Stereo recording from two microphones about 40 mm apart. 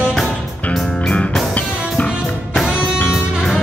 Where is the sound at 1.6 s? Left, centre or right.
Left.